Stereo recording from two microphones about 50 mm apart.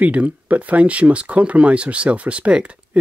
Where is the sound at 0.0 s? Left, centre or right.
Right.